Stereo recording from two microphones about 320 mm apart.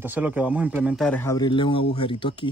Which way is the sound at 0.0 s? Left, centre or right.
Centre.